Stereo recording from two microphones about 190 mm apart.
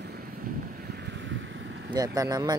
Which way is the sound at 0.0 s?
50° right (ahead or behind).